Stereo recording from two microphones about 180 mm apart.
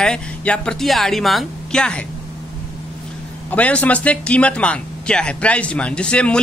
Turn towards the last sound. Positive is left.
turn(degrees=5)  # may be behind; listen again after turning